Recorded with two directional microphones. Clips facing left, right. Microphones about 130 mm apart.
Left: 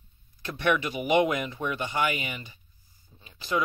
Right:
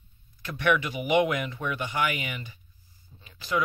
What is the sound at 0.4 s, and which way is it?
Speech, 25° left (ahead or behind).